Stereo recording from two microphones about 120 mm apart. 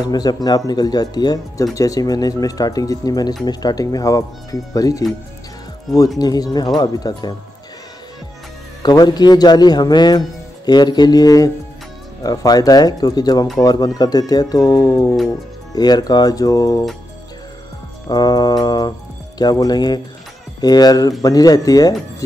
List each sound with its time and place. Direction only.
0.0 s speech: 35° left (ahead or behind)
6.1 s speech: 35° left (ahead or behind)
8.8 s speech: 35° left (ahead or behind)
18.0 s speech: 35° left (ahead or behind)